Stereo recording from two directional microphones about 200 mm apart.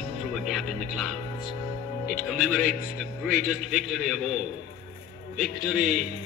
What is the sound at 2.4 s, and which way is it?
Speech, centre (ahead or behind).